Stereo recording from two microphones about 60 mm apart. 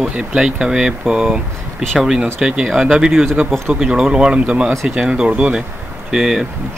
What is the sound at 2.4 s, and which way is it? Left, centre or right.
Speech, centre.